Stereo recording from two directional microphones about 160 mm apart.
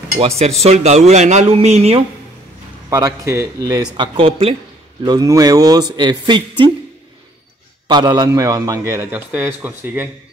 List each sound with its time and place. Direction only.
0.4 s speech: 40° right (ahead or behind)
2.9 s a man's voice: 20° right (ahead or behind)
3.9 s speech: 30° right (ahead or behind)
5.0 s a man's voice: 20° right (ahead or behind)
7.9 s a man's voice: 25° right (ahead or behind); by 10.0 s 10° right (ahead or behind)